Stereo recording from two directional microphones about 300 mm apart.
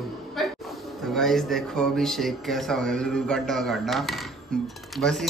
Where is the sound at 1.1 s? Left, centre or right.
Centre.